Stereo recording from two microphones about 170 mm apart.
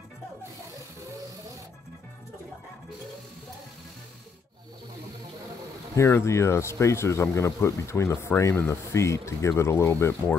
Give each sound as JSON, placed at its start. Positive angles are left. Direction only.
{"t": 5.9, "sound": "speech", "side_deg": 15}